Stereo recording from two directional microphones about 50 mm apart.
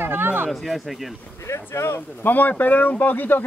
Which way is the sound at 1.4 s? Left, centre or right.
Left.